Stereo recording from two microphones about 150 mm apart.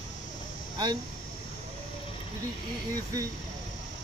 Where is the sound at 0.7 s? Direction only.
30° right (ahead or behind).